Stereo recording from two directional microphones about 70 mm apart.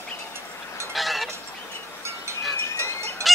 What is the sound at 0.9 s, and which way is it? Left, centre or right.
Honk, centre.